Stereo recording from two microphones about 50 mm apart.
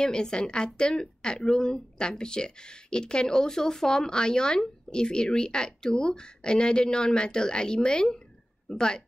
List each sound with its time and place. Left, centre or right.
0.0 s speech: centre